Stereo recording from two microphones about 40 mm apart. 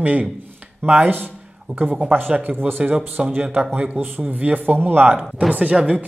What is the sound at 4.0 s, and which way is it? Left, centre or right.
Speech, right.